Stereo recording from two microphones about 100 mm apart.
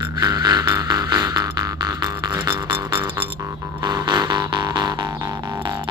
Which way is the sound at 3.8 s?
40° right (ahead or behind).